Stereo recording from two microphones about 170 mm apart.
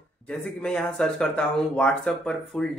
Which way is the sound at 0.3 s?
5° left (ahead or behind).